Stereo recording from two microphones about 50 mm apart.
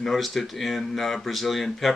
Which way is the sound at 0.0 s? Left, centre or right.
Centre.